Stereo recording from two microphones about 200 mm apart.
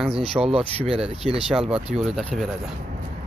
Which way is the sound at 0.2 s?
30° right (ahead or behind).